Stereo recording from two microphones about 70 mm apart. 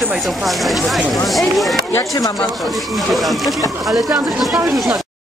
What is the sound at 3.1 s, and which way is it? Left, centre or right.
Speech, centre.